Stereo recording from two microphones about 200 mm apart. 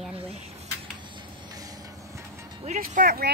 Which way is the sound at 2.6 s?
40° right (ahead or behind).